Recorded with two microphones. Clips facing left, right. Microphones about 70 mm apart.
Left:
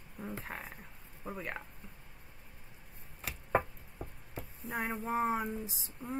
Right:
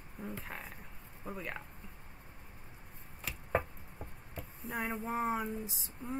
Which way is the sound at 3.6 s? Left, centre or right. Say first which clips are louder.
Left 2 dB; centre.